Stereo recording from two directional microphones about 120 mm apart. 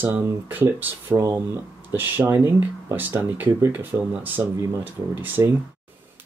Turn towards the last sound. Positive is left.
turn(degrees=-15)  # may be behind; listen again after turning